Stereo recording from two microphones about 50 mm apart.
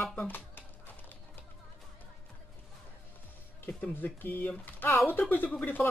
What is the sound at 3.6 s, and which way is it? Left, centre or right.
Speech, left.